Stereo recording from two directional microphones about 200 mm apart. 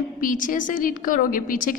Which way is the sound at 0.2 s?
40° left (ahead or behind).